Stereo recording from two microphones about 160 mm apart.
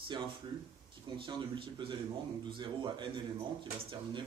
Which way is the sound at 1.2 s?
30° right (ahead or behind).